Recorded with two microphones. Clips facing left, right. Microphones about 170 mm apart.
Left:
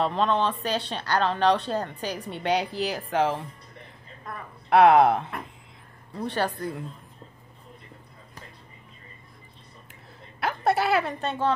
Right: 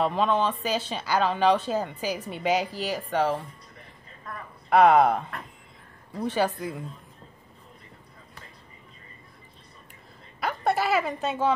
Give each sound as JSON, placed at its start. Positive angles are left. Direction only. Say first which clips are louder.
{"t": 0.0, "sound": "speech", "louder": "even", "side_deg": -5}
{"t": 4.6, "sound": "speech", "louder": "left 1 dB", "side_deg": 0}
{"t": 10.4, "sound": "a sound", "louder": "left 1 dB", "side_deg": 0}